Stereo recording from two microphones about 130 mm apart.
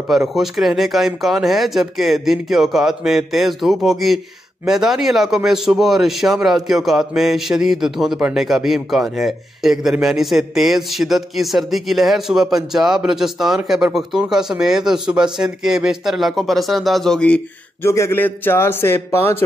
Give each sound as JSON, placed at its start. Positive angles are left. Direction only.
{"t": 0.1, "sound": "a man's voice", "side_deg": 0}
{"t": 17.8, "sound": "a man's voice", "side_deg": 20}